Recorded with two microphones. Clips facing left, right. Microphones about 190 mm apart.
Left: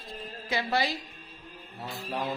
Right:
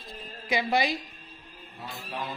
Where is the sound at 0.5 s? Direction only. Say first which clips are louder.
Right 3 dB; 15° right (ahead or behind).